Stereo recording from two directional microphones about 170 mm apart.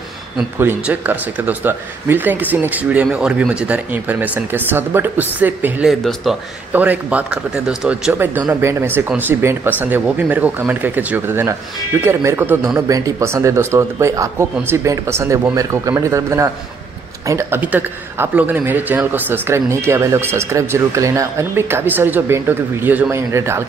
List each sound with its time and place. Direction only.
0.6 s a man's voice: 10° right (ahead or behind)